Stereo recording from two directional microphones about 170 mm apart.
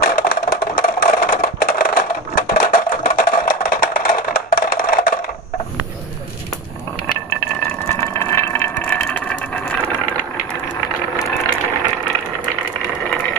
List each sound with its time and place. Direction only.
0.0 s wood block: 60° left (ahead or behind)
7.9 s vehicle: 15° left (ahead or behind)